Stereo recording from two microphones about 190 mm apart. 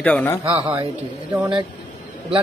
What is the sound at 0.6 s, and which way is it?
Speech, 25° right (ahead or behind).